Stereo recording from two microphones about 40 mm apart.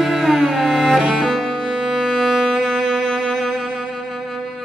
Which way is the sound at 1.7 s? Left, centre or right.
Right.